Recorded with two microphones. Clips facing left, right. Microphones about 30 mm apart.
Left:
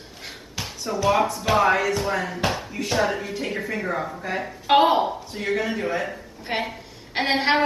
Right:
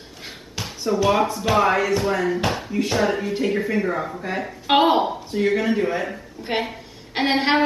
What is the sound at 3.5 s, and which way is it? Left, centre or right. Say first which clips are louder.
A woman's voice: right 4 dB; centre.